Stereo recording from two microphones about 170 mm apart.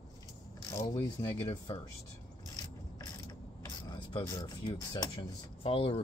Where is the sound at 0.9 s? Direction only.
30° left (ahead or behind).